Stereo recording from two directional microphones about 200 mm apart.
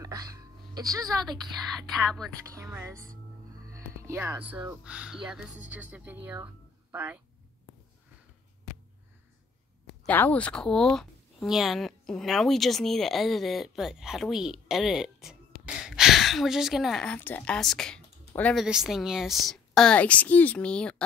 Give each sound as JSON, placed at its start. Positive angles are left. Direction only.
{"t": 0.0, "sound": "music", "side_deg": -20}
{"t": 2.0, "sound": "a woman's voice", "side_deg": 0}
{"t": 2.5, "sound": "speech", "side_deg": -15}
{"t": 4.0, "sound": "speech", "side_deg": -15}
{"t": 10.0, "sound": "a woman's voice", "side_deg": 10}